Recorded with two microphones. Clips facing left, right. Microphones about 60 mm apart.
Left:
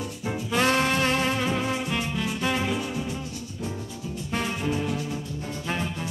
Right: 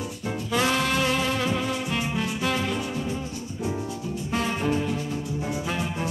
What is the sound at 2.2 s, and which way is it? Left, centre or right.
Music, centre.